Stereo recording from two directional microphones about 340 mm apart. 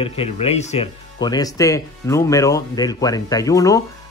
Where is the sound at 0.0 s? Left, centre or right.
Centre.